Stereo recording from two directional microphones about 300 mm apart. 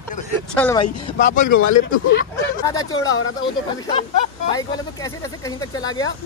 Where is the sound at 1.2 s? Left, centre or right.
Left.